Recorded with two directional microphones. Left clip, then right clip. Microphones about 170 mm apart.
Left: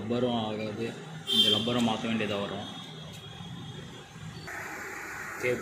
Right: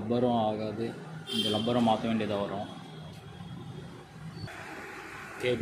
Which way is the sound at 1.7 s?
15° right (ahead or behind).